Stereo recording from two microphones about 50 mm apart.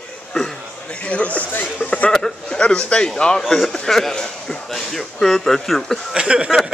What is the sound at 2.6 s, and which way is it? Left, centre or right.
A man's voice, left.